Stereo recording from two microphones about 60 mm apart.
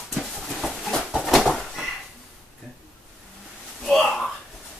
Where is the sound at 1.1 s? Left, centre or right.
Centre.